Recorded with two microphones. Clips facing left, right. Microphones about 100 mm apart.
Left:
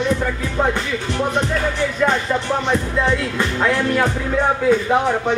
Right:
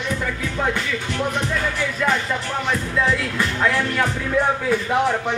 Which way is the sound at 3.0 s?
20° left (ahead or behind).